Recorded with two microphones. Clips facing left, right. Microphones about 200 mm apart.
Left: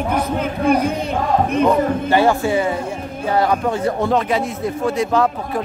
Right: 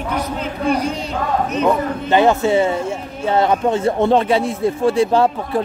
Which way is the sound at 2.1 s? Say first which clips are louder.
Right 4 dB; 20° right (ahead or behind).